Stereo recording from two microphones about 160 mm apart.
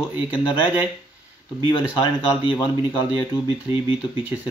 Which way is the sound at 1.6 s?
30° left (ahead or behind).